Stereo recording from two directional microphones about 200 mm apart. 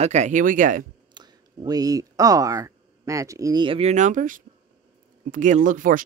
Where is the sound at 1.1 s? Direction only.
20° right (ahead or behind).